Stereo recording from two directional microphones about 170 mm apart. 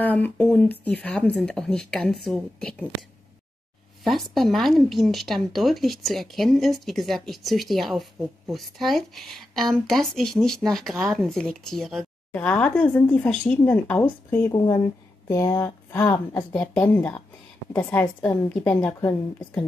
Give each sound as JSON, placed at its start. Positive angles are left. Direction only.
{"t": 0.0, "sound": "speech", "side_deg": 10}
{"t": 14.5, "sound": "speech", "side_deg": 25}
{"t": 18.2, "sound": "speech", "side_deg": 5}